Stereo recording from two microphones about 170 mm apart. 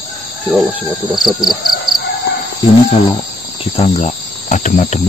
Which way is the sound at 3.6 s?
40° left (ahead or behind).